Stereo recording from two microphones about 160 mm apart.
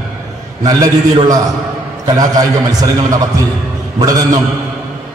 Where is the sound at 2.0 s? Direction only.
25° right (ahead or behind).